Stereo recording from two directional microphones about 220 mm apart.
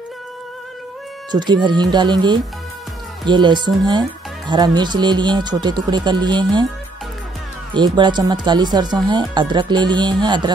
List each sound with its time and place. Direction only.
1.3 s speech: 20° right (ahead or behind)
7.7 s speech: 20° right (ahead or behind)